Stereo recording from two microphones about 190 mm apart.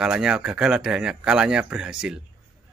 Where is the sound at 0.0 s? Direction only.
5° right (ahead or behind).